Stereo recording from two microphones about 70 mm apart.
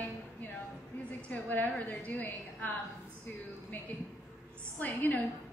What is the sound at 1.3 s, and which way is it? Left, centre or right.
A woman's voice, left.